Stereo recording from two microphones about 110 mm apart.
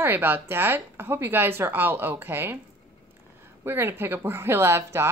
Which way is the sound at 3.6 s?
20° right (ahead or behind).